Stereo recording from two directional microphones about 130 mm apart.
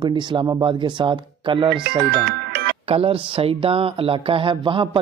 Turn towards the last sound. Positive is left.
turn(degrees=-40)  # may be behind; listen again after turning